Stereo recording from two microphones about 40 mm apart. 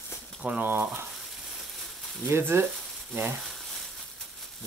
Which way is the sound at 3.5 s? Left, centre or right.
Centre.